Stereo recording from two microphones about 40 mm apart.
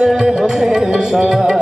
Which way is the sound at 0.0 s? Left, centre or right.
Centre.